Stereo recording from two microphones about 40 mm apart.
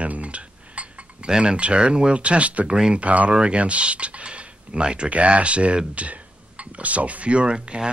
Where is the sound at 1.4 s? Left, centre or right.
Right.